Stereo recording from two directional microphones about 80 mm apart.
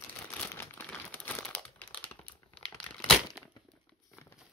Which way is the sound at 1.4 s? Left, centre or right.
Centre.